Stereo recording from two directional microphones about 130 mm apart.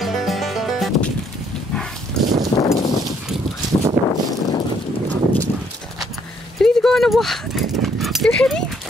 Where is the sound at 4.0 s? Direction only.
20° right (ahead or behind).